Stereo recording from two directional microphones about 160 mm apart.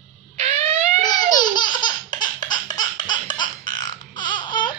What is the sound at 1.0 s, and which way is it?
Laughter, 25° left (ahead or behind).